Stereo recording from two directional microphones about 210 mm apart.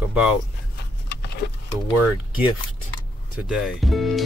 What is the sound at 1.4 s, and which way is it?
Speech, 55° left (ahead or behind).